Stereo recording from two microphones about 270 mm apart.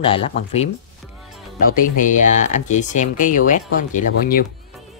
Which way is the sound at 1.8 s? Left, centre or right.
Left.